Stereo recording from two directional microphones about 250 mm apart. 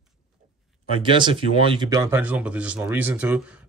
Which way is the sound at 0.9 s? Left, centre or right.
Centre.